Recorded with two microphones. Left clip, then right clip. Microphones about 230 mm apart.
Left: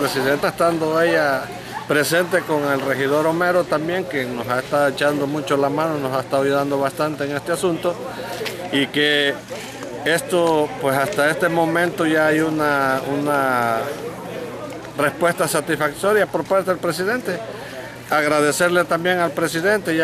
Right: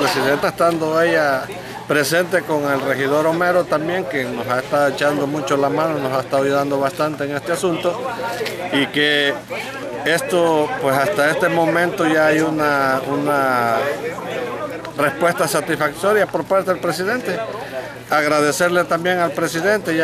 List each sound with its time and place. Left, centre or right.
0.0 s speech: centre
15.0 s speech: centre